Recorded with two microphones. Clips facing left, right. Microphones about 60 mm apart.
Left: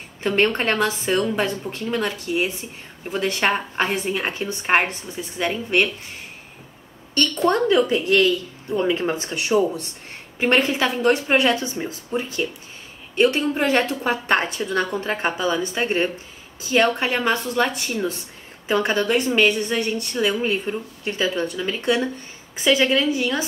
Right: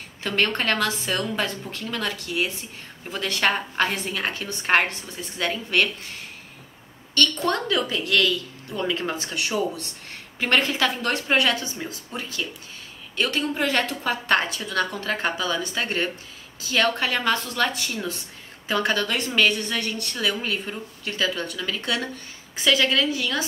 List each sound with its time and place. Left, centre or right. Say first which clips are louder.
0.2 s a woman's voice: left 4 dB; left
7.2 s a woman's voice: left 4 dB; left